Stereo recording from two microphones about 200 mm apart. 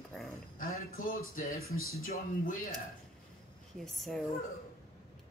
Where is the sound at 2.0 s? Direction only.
45° left (ahead or behind).